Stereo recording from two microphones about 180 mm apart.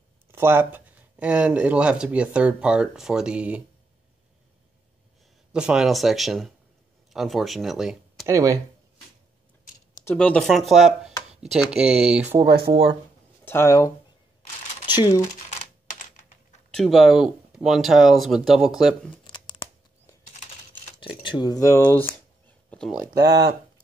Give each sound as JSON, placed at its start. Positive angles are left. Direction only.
{"t": 0.3, "sound": "speech", "side_deg": -10}
{"t": 5.5, "sound": "speech", "side_deg": -5}
{"t": 8.3, "sound": "speech", "side_deg": -15}
{"t": 10.0, "sound": "speech", "side_deg": 5}
{"t": 12.4, "sound": "speech", "side_deg": -60}
{"t": 13.5, "sound": "speech", "side_deg": 15}
{"t": 15.9, "sound": "typing", "side_deg": 45}
{"t": 16.7, "sound": "speech", "side_deg": 0}
{"t": 19.2, "sound": "tearing", "side_deg": 25}
{"t": 21.2, "sound": "speech", "side_deg": 25}